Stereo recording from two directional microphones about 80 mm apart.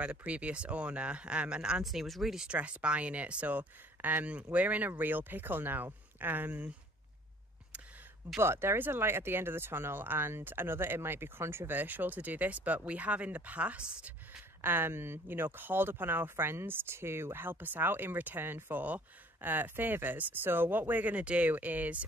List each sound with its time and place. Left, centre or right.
0.0 s speech: centre
8.4 s speech: right; by 14.4 s centre
14.6 s speech: right